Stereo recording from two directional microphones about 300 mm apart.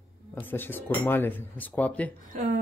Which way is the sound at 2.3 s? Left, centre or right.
Right.